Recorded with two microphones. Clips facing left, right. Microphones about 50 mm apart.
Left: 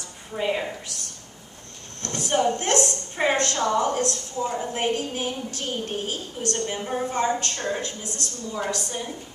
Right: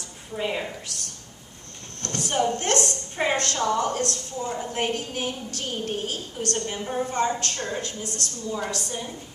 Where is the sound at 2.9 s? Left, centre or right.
Centre.